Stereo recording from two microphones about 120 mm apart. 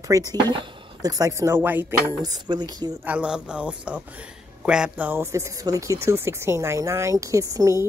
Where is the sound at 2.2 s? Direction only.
35° right (ahead or behind).